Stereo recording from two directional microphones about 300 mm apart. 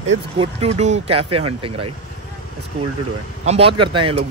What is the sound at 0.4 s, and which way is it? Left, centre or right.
Speech, centre.